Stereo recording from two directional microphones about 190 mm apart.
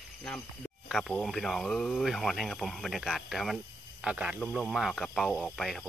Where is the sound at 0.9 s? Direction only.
Centre (ahead or behind).